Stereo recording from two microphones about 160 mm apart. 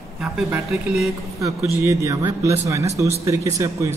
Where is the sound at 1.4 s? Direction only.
20° right (ahead or behind).